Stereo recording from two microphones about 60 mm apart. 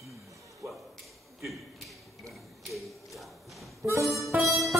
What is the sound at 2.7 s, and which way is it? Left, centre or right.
Tap, centre.